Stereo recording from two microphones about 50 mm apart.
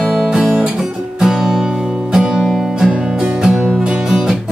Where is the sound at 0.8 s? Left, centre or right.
Centre.